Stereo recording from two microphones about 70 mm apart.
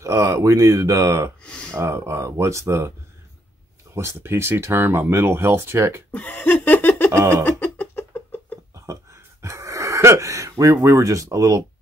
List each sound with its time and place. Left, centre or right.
0.0 s speech: right
1.4 s a sound: centre
1.8 s speech: right
3.9 s speech: right
6.1 s laughter: left
7.1 s a sound: right
7.4 s a sound: left
8.9 s gasp: right
10.6 s speech: right